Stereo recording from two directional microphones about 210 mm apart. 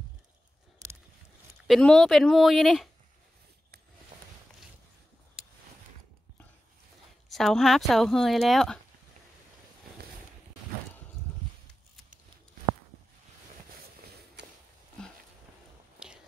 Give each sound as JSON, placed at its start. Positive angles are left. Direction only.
{"t": 1.7, "sound": "speech", "side_deg": 0}
{"t": 7.2, "sound": "speech", "side_deg": 0}
{"t": 14.4, "sound": "walk", "side_deg": -55}
{"t": 15.0, "sound": "a sound", "side_deg": 5}